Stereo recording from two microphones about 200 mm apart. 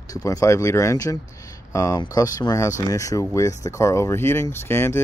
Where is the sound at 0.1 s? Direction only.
15° left (ahead or behind).